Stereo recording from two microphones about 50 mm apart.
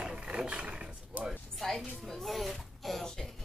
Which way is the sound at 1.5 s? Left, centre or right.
Centre.